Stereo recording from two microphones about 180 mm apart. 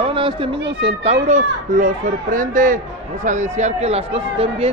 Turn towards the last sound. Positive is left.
turn(degrees=-35)  # may be behind; listen again after turning